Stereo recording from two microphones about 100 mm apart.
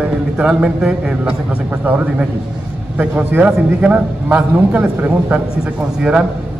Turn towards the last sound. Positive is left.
turn(degrees=-10)  # may be behind; listen again after turning